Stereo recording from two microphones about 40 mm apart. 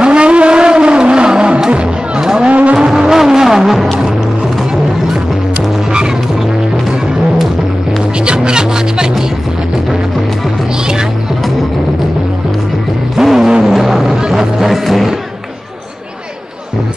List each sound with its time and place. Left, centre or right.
0.0 s vehicle: right
1.7 s music: right
2.7 s music: centre
8.3 s music: right
13.2 s a sound: centre
14.1 s music: centre